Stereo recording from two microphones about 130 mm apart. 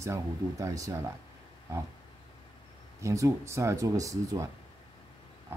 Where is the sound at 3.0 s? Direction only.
25° right (ahead or behind).